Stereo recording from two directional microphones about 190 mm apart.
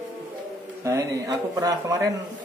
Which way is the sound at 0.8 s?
15° right (ahead or behind).